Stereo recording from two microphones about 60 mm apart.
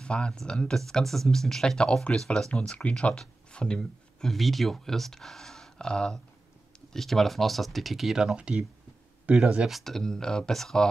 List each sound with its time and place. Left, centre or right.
0.0 s speech: centre
8.4 s speech: centre
9.8 s speech: centre